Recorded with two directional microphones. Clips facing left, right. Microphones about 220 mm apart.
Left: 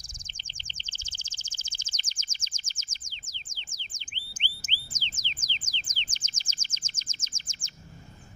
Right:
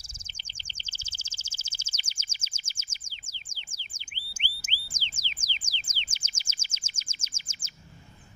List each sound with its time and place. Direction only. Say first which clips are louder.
0.7 s bird: left 1 dB; 10° right (ahead or behind)